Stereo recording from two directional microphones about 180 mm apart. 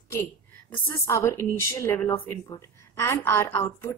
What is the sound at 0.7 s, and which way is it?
Speech, 15° left (ahead or behind).